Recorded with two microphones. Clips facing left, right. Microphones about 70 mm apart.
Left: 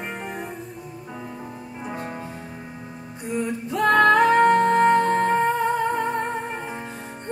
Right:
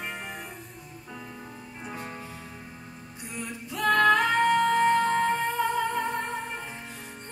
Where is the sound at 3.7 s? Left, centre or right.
Left.